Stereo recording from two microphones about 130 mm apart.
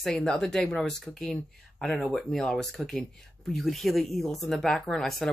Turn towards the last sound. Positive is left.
turn(degrees=0)  # may be behind; listen again after turning